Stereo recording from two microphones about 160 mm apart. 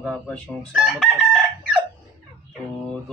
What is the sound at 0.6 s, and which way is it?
Speech, centre (ahead or behind).